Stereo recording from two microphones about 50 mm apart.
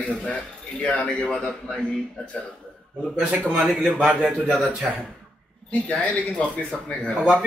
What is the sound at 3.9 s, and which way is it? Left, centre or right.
Speech, right.